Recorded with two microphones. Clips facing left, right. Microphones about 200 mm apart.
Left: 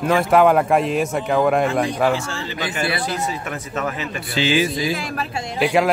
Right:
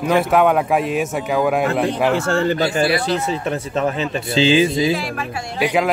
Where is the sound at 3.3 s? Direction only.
30° right (ahead or behind).